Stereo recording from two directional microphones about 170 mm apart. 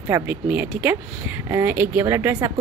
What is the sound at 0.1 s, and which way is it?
A woman's voice, 10° right (ahead or behind).